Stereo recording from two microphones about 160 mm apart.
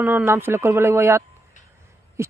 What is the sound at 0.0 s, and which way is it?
Speech, 15° right (ahead or behind).